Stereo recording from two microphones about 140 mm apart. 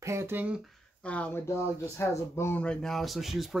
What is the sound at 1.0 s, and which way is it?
Speech, 10° left (ahead or behind).